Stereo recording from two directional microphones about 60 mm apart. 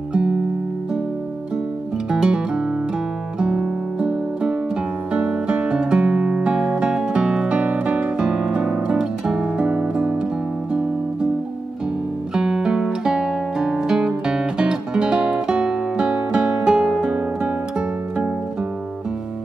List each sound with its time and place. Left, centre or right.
0.1 s music: centre
2.0 s music: centre
10.7 s guitar: centre
12.4 s guitar: centre